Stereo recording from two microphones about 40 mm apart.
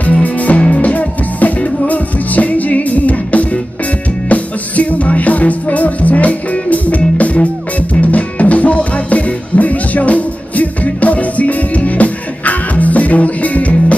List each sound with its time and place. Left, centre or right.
0.0 s music: left